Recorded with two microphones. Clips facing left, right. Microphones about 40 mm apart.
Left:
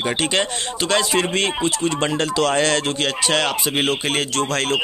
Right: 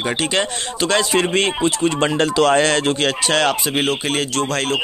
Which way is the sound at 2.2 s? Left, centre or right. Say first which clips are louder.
Right 5 dB; right.